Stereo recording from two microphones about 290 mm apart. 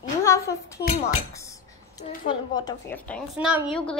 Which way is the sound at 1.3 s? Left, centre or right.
Centre.